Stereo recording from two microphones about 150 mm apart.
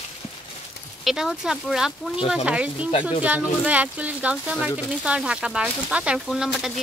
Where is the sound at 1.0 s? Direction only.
5° right (ahead or behind).